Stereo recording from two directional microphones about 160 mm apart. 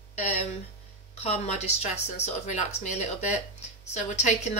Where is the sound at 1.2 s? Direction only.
45° left (ahead or behind).